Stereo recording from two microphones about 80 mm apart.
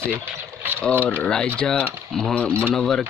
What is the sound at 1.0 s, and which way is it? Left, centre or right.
Speech, centre.